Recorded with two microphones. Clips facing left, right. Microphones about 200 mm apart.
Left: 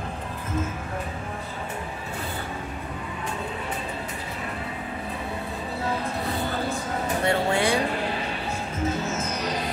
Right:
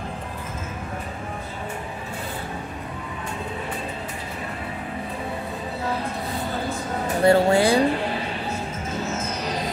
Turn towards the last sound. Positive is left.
turn(degrees=-35)  # may be behind; listen again after turning